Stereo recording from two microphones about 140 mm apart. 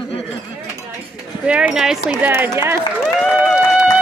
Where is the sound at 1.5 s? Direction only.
5° right (ahead or behind).